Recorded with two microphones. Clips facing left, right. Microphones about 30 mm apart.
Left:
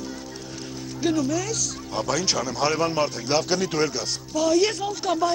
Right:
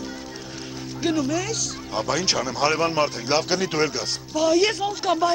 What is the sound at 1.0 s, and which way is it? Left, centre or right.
Speech, centre.